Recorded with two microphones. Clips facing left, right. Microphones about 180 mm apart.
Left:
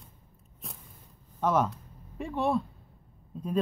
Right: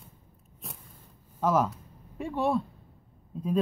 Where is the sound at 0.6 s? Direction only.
Centre (ahead or behind).